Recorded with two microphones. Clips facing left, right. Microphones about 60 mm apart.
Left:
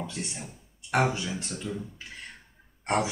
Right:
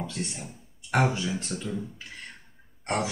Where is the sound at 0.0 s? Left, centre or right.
Centre.